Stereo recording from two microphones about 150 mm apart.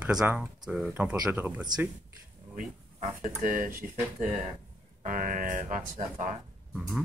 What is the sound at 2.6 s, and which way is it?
Speech, 65° right (ahead or behind).